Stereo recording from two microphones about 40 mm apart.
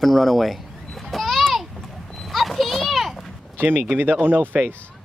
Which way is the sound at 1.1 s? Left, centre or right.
Centre.